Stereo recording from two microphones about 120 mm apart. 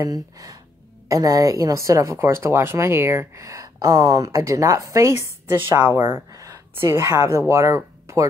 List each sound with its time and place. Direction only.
0.0 s a woman's voice: 30° right (ahead or behind)
6.3 s speech: 30° right (ahead or behind)